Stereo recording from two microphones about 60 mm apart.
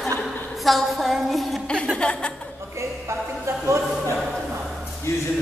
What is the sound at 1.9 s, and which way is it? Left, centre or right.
Chuckle, centre.